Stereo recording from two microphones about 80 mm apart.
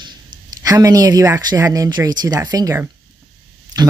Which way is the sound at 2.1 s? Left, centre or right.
Right.